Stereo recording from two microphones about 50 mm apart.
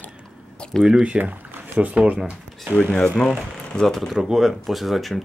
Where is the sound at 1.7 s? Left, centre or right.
Right.